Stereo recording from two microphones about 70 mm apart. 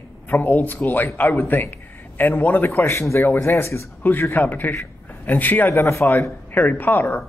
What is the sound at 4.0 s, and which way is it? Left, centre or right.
Speech, left.